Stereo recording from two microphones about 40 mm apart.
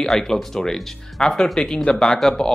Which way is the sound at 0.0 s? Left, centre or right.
Centre.